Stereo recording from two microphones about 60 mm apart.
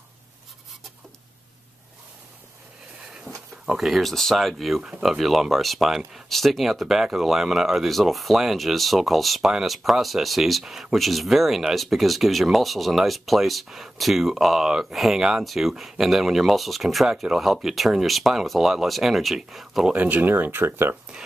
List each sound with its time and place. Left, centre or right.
3.3 s speech: right
3.6 s speech: centre
19.9 s speech: right